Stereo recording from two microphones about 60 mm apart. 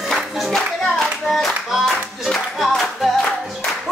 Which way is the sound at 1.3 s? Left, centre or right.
Centre.